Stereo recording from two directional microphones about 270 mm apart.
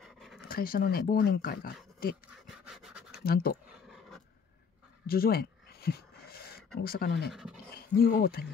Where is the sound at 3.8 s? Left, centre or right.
Centre.